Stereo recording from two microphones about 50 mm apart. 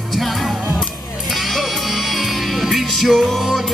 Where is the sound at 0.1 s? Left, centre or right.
Centre.